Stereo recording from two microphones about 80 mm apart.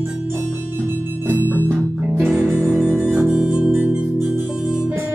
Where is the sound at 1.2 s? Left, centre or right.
Right.